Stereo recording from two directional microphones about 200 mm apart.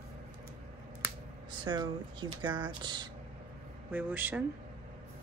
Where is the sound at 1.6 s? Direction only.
20° right (ahead or behind).